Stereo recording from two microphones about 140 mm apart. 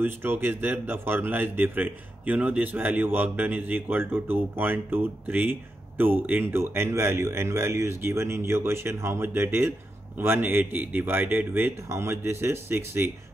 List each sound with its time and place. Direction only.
0.0 s a man's voice: 15° right (ahead or behind)